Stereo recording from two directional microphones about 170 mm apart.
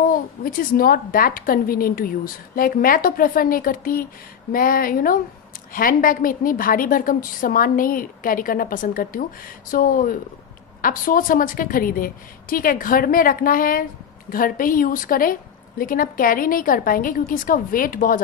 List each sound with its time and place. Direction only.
0.1 s a woman's voice: 55° left (ahead or behind)